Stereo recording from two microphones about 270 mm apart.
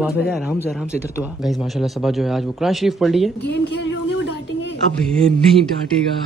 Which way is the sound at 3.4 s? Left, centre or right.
Left.